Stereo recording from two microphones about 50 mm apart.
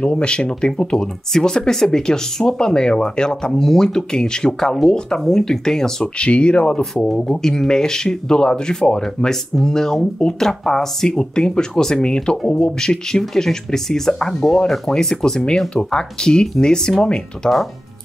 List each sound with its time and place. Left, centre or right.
0.0 s speech: centre
6.1 s speech: left